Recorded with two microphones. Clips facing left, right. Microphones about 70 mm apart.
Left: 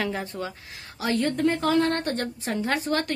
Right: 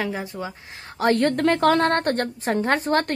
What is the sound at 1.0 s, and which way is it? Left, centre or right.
A woman's voice, right.